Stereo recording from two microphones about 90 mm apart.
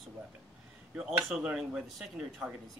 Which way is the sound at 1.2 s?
5° right (ahead or behind).